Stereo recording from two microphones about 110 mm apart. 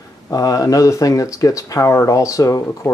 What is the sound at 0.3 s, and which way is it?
Speech, 35° left (ahead or behind).